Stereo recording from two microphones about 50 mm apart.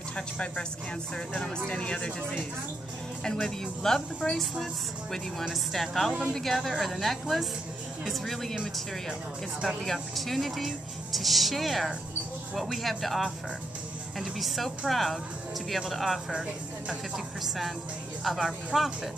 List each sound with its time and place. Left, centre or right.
0.1 s speech: left
3.3 s speech: centre
10.1 s speech: centre
14.4 s speech: centre
16.3 s speech: centre
18.2 s speech: centre